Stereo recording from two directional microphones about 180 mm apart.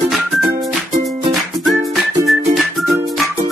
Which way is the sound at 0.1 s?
Centre (ahead or behind).